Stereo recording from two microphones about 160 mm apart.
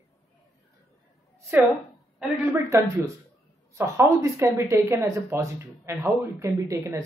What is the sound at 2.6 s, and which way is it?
A woman's voice, 20° right (ahead or behind).